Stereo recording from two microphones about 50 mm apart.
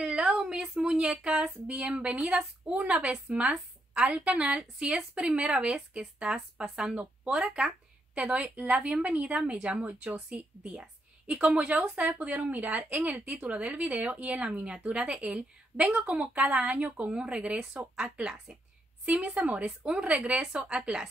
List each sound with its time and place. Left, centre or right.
0.0 s a sound: centre
0.6 s a woman's voice: centre
7.0 s a woman's voice: right
11.4 s a woman's voice: centre
19.0 s a woman's voice: right
19.6 s a woman's voice: centre